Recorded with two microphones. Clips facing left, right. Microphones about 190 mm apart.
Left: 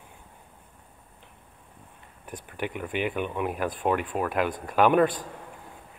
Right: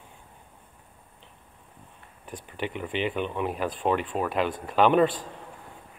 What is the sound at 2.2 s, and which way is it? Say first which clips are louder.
Speech: even; 15° left (ahead or behind).